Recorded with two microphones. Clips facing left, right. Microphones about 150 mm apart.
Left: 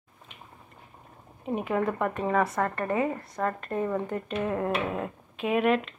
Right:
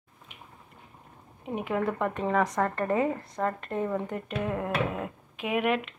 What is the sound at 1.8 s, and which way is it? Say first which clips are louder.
Speech: right 1 dB; 15° left (ahead or behind).